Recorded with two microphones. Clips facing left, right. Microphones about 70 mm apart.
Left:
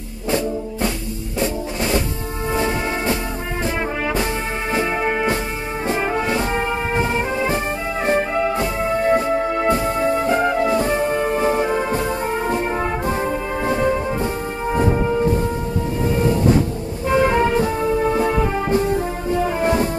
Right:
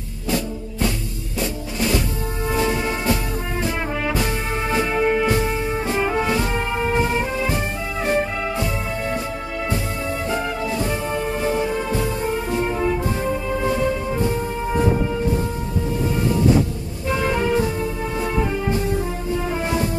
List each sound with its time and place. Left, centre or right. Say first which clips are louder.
1.4 s drum kit: left 2 dB; left
2.5 s music: left 1 dB; left
6.2 s brass instrument: left 1 dB; left
13.6 s music: left 4 dB; left
17.1 s music: left 4 dB; left